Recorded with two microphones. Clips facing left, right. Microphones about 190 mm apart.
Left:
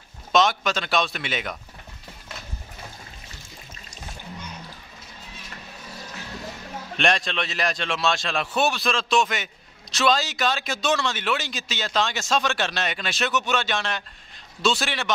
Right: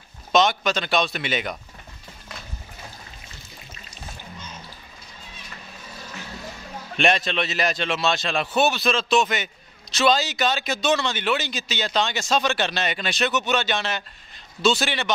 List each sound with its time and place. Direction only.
0.3 s a man's voice: centre (ahead or behind)
7.0 s a man's voice: centre (ahead or behind)